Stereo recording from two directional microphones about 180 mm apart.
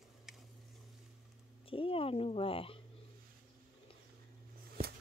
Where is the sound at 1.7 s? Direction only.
30° left (ahead or behind).